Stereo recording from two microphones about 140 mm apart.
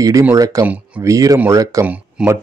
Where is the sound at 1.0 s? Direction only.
25° right (ahead or behind).